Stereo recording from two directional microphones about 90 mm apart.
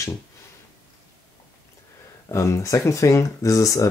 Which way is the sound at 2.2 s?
35° left (ahead or behind).